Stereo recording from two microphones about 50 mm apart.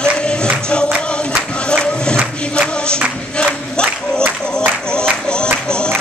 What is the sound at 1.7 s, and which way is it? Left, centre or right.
Music, centre.